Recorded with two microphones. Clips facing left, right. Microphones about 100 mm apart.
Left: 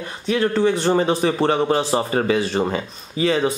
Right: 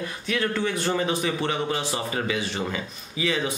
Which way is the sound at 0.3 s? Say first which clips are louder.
Left 8 dB; 25° left (ahead or behind).